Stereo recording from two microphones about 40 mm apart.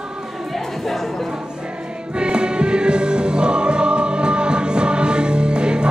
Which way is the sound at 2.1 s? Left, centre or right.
Right.